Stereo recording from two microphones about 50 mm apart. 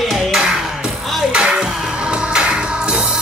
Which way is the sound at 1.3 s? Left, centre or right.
Centre.